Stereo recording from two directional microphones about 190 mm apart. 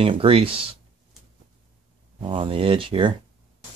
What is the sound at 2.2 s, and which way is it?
Speech, 25° right (ahead or behind).